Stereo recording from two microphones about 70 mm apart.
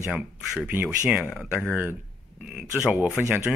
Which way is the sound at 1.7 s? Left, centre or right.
Right.